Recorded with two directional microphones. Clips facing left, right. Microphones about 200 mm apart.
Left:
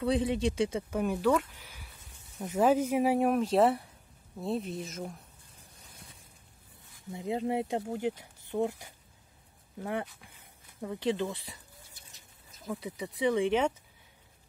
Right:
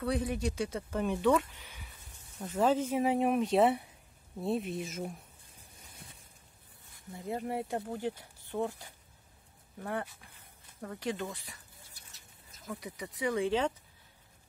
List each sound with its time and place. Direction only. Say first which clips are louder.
0.0 s speech: left 4 dB; 25° left (ahead or behind)
0.8 s speech: right 3 dB; 5° left (ahead or behind)
7.1 s speech: left 5 dB; 20° left (ahead or behind)
11.0 s speech: left 6 dB; 25° left (ahead or behind)
12.6 s speech: left 4 dB; 30° left (ahead or behind)
13.3 s speech: left 3 dB; 15° left (ahead or behind)